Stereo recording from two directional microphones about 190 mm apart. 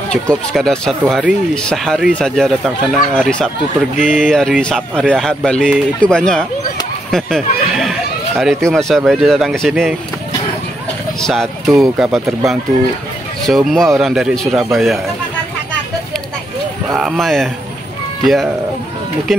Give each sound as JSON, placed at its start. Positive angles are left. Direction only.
{"t": 0.1, "sound": "speech", "side_deg": 5}
{"t": 3.9, "sound": "speech", "side_deg": 40}
{"t": 4.3, "sound": "speech", "side_deg": 5}
{"t": 11.1, "sound": "speech", "side_deg": 0}
{"t": 16.9, "sound": "speech", "side_deg": 0}